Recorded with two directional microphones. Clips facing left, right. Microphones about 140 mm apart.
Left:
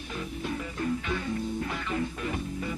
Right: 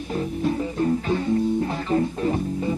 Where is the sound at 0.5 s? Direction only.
35° right (ahead or behind).